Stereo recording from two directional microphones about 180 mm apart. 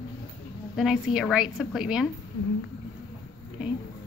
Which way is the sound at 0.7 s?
5° right (ahead or behind).